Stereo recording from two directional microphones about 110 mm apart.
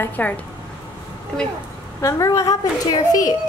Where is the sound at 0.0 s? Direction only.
15° left (ahead or behind).